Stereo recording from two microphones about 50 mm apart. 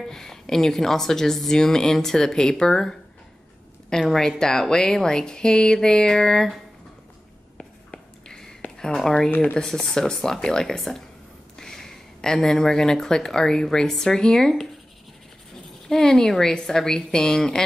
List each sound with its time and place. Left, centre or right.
0.1 s a woman's voice: centre
7.5 s whispering: centre
8.7 s a woman's voice: centre
15.9 s a woman's voice: centre